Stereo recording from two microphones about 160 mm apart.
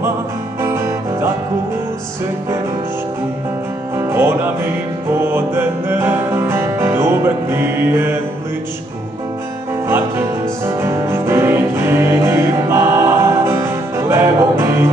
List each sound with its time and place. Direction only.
0.6 s music: 15° right (ahead or behind)
3.9 s music: 15° right (ahead or behind)
9.8 s music: 15° right (ahead or behind)